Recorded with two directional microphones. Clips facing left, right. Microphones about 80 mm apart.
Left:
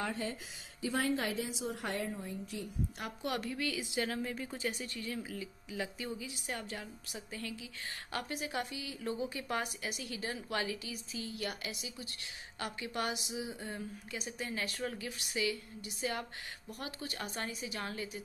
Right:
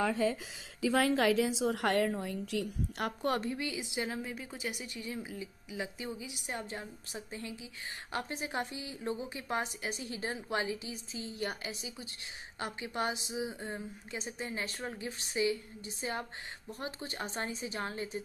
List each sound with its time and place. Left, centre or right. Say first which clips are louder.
0.9 s a woman's voice: right 6 dB; right
3.3 s speech: right 1 dB; right